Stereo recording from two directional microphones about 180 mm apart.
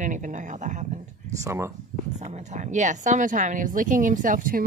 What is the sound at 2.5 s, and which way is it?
Speech, 40° right (ahead or behind).